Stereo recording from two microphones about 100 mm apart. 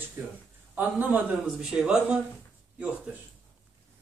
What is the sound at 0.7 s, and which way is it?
Speech, 20° right (ahead or behind).